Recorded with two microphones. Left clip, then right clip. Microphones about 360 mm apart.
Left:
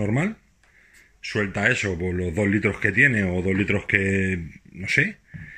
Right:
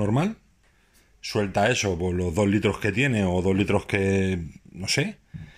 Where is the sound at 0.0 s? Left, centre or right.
Centre.